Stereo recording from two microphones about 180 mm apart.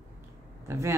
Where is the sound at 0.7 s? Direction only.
15° right (ahead or behind).